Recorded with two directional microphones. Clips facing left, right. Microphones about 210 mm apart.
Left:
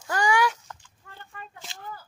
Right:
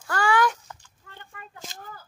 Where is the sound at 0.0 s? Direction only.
15° left (ahead or behind).